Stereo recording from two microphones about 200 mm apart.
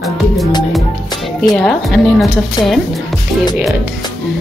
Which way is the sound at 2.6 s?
20° left (ahead or behind).